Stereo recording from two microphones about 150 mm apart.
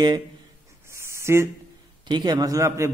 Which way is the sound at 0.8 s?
20° right (ahead or behind).